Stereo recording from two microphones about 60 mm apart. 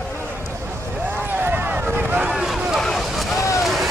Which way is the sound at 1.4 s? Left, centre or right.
Right.